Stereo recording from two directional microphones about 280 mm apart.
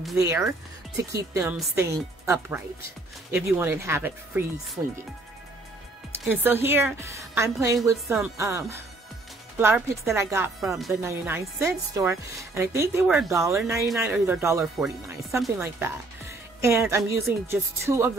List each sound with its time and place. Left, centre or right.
0.2 s speech: centre
6.2 s speech: centre